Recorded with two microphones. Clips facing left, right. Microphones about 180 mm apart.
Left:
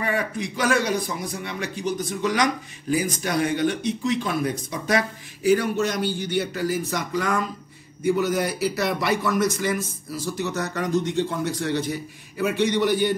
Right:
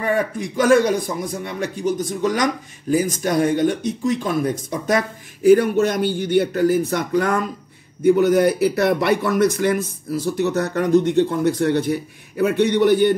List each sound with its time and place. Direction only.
0.0 s a man's voice: 45° right (ahead or behind)